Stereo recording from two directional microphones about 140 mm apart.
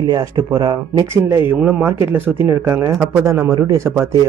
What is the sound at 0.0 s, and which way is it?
Speech, 30° right (ahead or behind).